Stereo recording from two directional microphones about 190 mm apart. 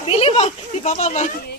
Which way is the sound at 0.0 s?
30° left (ahead or behind).